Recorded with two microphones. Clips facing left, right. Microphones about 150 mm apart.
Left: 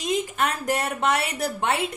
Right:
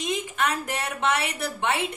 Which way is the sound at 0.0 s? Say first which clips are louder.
Left 2 dB; 40° left (ahead or behind).